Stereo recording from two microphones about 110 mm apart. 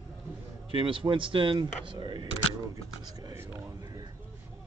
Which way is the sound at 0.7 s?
50° right (ahead or behind).